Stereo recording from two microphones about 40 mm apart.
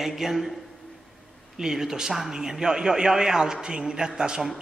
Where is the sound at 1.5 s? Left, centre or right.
Centre.